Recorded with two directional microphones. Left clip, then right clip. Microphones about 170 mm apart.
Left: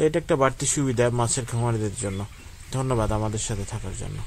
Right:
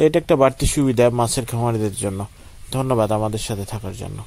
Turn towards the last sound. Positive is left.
turn(degrees=-30)  # may be behind; listen again after turning